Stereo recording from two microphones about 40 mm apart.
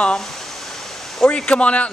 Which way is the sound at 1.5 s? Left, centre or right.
Left.